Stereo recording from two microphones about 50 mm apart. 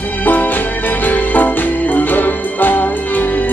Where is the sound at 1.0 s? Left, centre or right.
Left.